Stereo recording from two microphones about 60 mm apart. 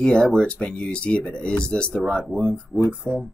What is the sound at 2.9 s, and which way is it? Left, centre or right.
Speech, centre.